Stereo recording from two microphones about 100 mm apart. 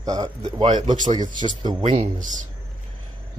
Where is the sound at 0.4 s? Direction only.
60° right (ahead or behind).